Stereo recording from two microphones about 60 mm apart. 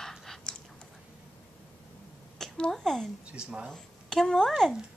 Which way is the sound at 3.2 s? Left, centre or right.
Centre.